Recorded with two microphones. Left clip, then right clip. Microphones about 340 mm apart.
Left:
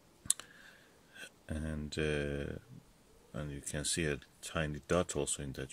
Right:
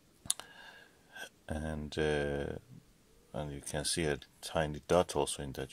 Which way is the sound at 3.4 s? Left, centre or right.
Centre.